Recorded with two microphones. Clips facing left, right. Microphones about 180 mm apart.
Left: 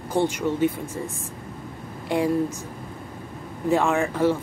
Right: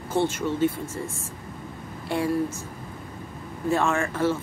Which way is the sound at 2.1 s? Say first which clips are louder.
Left 3 dB; 15° left (ahead or behind).